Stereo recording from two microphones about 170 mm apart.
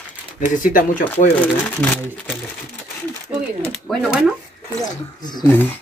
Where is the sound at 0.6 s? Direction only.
50° left (ahead or behind).